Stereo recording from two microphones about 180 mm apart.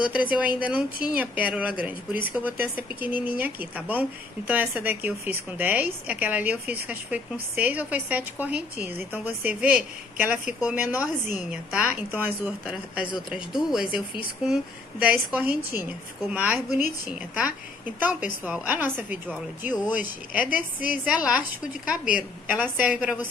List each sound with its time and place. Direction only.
0.1 s a woman's voice: 10° right (ahead or behind)
20.4 s a woman's voice: 50° left (ahead or behind)
21.0 s a woman's voice: 5° right (ahead or behind)